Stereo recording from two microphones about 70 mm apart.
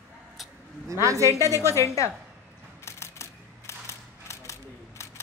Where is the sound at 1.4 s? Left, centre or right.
Left.